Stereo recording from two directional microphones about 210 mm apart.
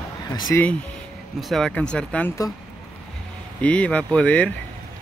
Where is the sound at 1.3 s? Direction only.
Centre (ahead or behind).